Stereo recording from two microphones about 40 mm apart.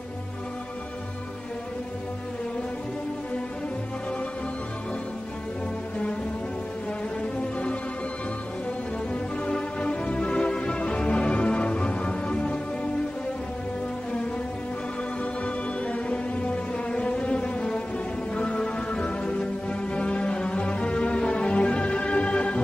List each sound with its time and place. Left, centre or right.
9.1 s music: left
15.4 s music: left